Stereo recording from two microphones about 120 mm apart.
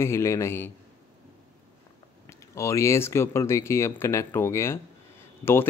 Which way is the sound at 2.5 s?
25° left (ahead or behind).